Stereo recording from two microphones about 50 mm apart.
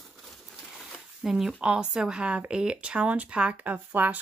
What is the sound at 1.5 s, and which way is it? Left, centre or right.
Speech, centre.